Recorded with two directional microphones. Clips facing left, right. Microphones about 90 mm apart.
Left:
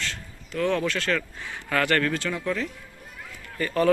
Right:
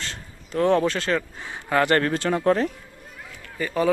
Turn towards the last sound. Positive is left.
turn(degrees=-10)  # may be behind; listen again after turning